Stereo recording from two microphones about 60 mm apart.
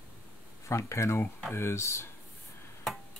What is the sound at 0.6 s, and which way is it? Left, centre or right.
Speech, left.